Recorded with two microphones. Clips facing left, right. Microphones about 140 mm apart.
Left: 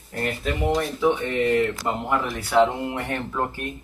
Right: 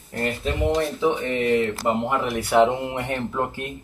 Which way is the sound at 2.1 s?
20° right (ahead or behind).